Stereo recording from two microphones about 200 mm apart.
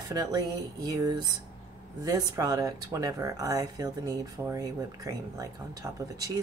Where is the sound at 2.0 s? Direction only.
20° right (ahead or behind).